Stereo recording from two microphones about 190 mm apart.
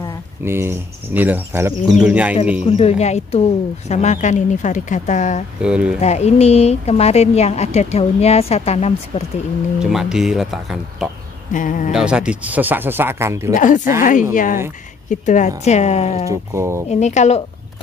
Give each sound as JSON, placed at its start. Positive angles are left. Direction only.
{"t": 0.5, "sound": "speech", "side_deg": -10}
{"t": 2.6, "sound": "a woman's voice", "side_deg": 30}
{"t": 5.6, "sound": "speech", "side_deg": -5}
{"t": 5.9, "sound": "a woman's voice", "side_deg": 35}
{"t": 9.8, "sound": "speech", "side_deg": -5}
{"t": 11.5, "sound": "speech", "side_deg": 45}
{"t": 11.9, "sound": "speech", "side_deg": -5}
{"t": 14.3, "sound": "a woman's voice", "side_deg": 45}
{"t": 16.3, "sound": "speech", "side_deg": -15}
{"t": 16.9, "sound": "a woman's voice", "side_deg": 35}